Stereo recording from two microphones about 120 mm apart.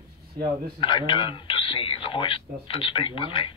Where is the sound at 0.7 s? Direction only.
45° left (ahead or behind).